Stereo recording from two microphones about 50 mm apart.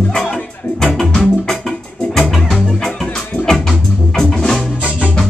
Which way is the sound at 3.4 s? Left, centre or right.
Centre.